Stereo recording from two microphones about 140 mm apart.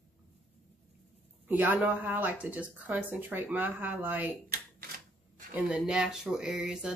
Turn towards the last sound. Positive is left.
turn(degrees=0)  # may be behind; listen again after turning